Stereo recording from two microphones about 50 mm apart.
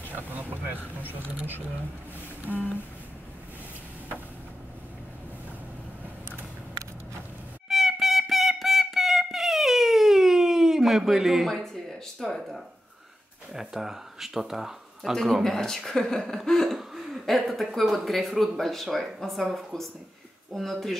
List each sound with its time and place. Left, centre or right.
0.1 s a sound: right
1.1 s speech: right
2.5 s speech: left
7.6 s music: centre
11.4 s speech: centre
13.5 s speech: centre
16.6 s speech: centre